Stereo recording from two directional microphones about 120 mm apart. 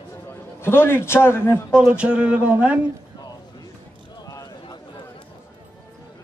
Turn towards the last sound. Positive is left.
turn(degrees=30)  # may be behind; listen again after turning